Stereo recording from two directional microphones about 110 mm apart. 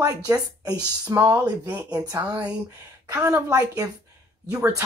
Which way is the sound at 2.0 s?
30° right (ahead or behind).